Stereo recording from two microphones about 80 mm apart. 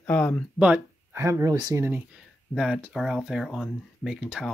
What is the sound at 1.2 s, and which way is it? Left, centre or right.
Speech, right.